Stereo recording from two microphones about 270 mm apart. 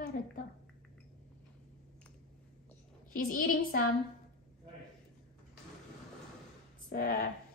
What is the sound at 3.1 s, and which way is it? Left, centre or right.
Speech, left.